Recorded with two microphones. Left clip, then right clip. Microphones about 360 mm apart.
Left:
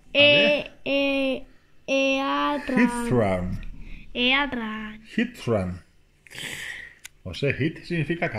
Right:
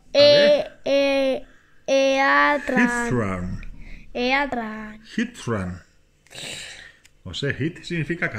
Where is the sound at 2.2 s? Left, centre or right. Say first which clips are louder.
Right 7 dB; right.